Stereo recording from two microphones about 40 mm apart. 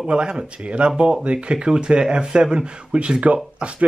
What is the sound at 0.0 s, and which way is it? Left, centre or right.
A man's voice, right.